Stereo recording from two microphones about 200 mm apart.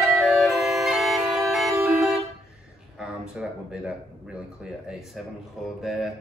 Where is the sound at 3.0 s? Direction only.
5° right (ahead or behind).